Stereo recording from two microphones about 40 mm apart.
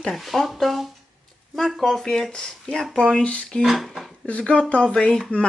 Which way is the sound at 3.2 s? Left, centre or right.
Left.